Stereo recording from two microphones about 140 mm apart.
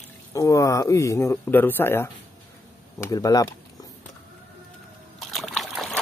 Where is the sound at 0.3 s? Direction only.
25° left (ahead or behind).